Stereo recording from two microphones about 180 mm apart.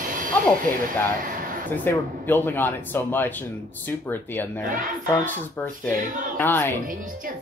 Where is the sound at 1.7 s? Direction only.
10° left (ahead or behind).